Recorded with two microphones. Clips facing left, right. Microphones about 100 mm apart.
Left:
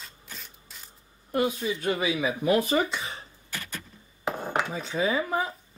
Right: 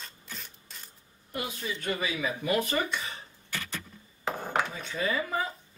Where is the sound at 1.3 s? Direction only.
40° left (ahead or behind).